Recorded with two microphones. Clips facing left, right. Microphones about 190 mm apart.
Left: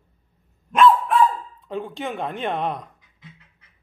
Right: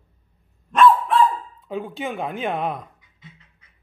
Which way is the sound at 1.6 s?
Centre (ahead or behind).